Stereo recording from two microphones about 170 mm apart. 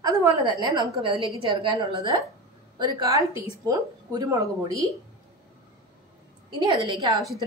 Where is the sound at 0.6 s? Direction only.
25° right (ahead or behind).